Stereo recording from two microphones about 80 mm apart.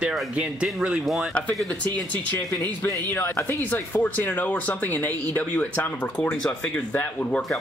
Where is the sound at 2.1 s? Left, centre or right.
Left.